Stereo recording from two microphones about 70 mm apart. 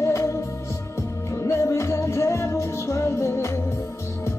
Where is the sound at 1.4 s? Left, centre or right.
Left.